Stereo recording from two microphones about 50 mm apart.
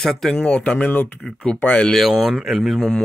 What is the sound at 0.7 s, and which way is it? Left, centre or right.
A man's voice, left.